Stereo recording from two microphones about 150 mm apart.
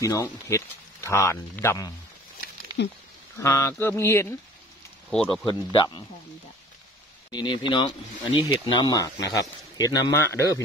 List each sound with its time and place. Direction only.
0.0 s speech: 20° left (ahead or behind)
3.3 s speech: 20° left (ahead or behind)
5.1 s speech: 5° left (ahead or behind)
5.5 s speech: 35° left (ahead or behind)
7.2 s speech: 30° left (ahead or behind)